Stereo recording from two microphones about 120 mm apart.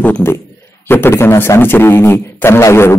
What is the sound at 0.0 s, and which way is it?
A man's voice, 15° left (ahead or behind).